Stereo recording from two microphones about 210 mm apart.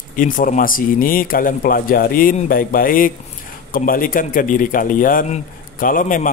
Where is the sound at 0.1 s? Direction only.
40° left (ahead or behind).